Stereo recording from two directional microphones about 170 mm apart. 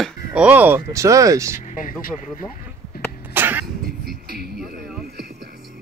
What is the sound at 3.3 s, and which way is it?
Cough, 10° right (ahead or behind).